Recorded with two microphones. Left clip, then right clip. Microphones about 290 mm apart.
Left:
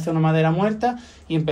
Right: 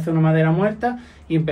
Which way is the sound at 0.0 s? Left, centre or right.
Centre.